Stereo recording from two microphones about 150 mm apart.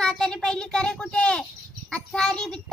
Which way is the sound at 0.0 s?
5° left (ahead or behind).